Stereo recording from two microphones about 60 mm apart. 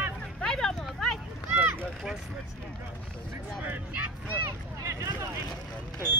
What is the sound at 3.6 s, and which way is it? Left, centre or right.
Speech, right.